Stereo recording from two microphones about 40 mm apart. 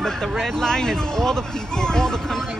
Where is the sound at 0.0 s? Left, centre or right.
Centre.